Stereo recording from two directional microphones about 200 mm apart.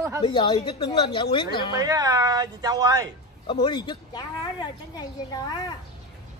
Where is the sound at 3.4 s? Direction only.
25° left (ahead or behind).